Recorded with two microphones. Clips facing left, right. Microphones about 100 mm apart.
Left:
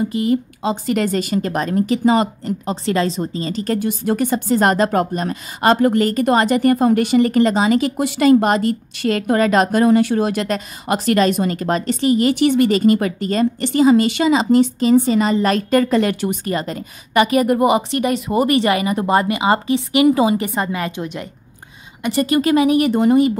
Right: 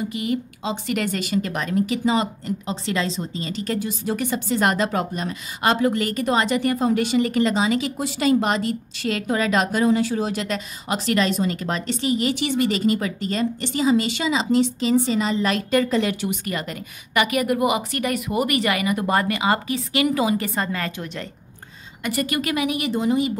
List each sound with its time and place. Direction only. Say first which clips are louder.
0.1 s a woman's voice: left 7 dB; 35° left (ahead or behind)
3.8 s speech: left 6 dB; 55° left (ahead or behind)
4.2 s a woman's voice: left 5 dB; 40° left (ahead or behind)
16.4 s a woman's voice: left 6 dB; 35° left (ahead or behind)
22.8 s a woman's voice: left 7 dB; 55° left (ahead or behind)